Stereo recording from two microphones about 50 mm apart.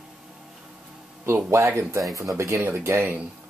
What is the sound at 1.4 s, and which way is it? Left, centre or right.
Speech, right.